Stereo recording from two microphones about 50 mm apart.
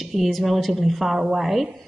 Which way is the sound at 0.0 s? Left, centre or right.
Centre.